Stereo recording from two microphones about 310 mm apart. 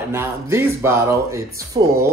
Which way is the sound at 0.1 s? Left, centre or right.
Centre.